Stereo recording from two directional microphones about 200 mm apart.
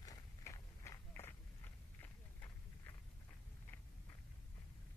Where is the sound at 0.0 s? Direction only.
15° left (ahead or behind).